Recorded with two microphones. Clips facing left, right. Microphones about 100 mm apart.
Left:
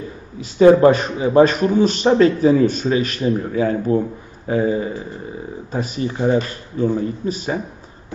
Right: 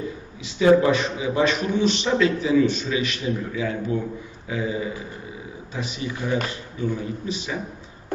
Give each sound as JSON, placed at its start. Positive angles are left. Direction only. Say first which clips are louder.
{"t": 0.4, "sound": "a man's voice", "louder": "left 6 dB", "side_deg": 45}